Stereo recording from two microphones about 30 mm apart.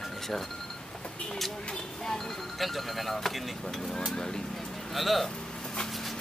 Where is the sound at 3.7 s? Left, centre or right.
Centre.